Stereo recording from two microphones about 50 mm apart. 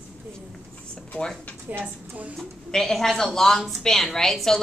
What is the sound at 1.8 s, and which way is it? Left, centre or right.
Speech, right.